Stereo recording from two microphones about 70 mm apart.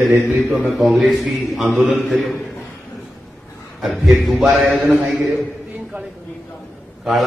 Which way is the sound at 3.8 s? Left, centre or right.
Centre.